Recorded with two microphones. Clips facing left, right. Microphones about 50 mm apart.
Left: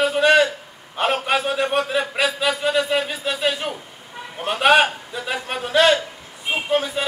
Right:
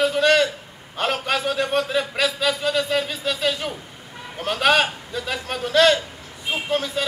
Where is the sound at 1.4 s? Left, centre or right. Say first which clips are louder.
Left 1 dB; left.